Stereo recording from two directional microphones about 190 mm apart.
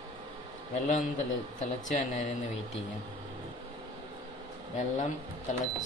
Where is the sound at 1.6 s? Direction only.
40° left (ahead or behind).